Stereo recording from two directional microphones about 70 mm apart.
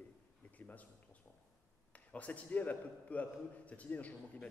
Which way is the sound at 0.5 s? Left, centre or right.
Left.